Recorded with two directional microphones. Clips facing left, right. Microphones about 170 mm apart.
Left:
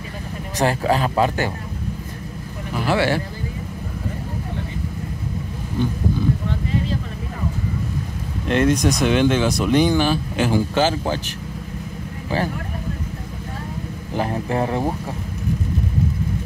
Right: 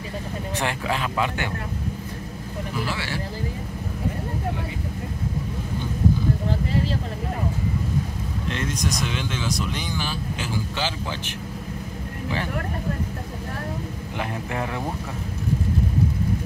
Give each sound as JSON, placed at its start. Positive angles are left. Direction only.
{"t": 0.6, "sound": "speech", "side_deg": 40}
{"t": 2.9, "sound": "speech", "side_deg": 60}
{"t": 8.5, "sound": "speech", "side_deg": 60}
{"t": 14.1, "sound": "speech", "side_deg": 35}